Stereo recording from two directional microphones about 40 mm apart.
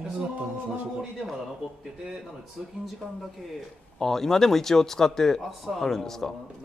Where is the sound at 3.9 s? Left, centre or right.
Centre.